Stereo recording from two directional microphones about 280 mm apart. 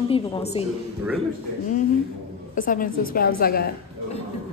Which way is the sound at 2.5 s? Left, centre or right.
Left.